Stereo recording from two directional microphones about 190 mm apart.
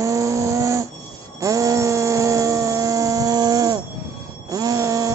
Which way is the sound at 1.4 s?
15° right (ahead or behind).